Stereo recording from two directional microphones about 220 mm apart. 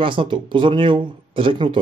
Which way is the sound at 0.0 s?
20° right (ahead or behind).